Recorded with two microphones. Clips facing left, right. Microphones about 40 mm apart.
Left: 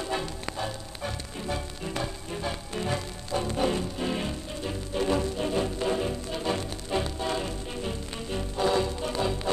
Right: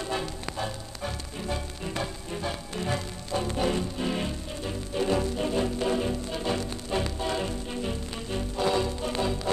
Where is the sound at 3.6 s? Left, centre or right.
Centre.